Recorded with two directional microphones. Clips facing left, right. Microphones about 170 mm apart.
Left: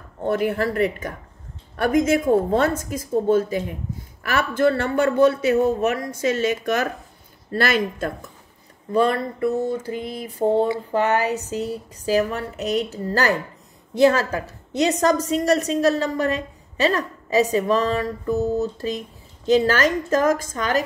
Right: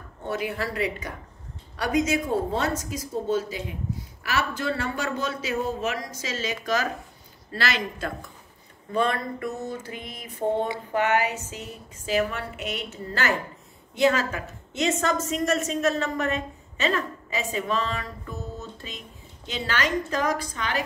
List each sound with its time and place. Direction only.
0.3 s a woman's voice: 50° left (ahead or behind)
8.9 s a woman's voice: 35° left (ahead or behind)